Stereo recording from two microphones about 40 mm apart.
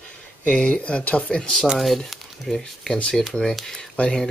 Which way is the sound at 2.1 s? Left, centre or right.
Centre.